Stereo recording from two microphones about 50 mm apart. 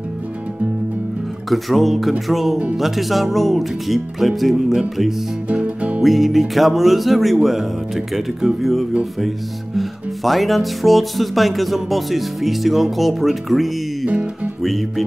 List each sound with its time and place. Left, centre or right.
1.5 s music: centre
5.5 s music: right
6.0 s music: centre
14.0 s music: right
14.6 s music: centre